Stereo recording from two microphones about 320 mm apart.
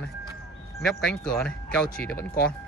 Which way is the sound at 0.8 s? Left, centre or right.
Centre.